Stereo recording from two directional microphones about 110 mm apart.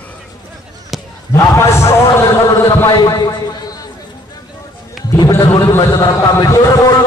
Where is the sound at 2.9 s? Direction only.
40° left (ahead or behind).